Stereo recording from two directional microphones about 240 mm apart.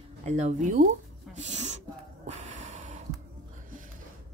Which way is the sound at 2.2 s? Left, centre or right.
Right.